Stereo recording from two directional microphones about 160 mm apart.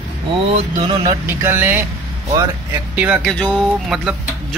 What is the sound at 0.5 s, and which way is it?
Speech, 35° right (ahead or behind).